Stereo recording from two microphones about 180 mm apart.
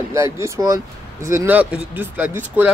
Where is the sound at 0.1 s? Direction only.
20° right (ahead or behind).